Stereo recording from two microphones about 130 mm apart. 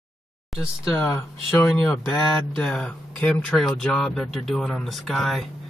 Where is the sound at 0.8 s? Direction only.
20° left (ahead or behind); by 5.4 s centre (ahead or behind).